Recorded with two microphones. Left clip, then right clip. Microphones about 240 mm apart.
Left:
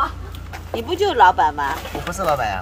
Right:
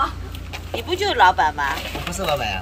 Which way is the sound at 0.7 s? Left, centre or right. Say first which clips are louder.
Left 2 dB; left.